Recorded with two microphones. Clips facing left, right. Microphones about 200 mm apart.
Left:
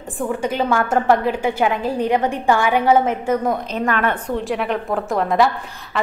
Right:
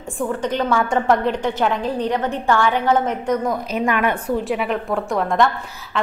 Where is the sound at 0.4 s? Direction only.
10° left (ahead or behind).